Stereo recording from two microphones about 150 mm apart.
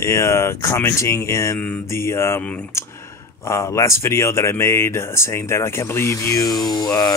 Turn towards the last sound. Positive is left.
turn(degrees=25)  # may be behind; listen again after turning